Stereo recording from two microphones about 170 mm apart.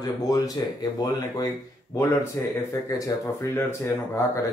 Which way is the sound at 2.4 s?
15° left (ahead or behind).